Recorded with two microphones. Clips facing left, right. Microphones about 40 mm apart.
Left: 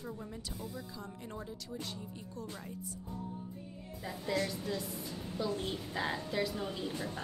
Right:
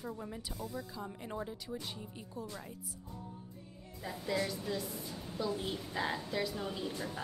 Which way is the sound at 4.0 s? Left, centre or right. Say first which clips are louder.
Left 1 dB; centre.